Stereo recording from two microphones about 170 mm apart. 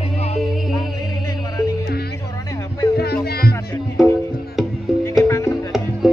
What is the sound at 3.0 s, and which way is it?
Music, 70° left (ahead or behind).